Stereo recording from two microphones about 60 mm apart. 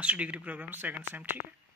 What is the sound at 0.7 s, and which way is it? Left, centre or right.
Speech, right.